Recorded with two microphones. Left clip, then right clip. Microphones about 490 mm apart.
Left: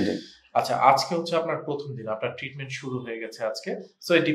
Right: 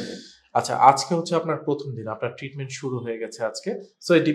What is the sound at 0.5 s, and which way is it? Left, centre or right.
Speech, right.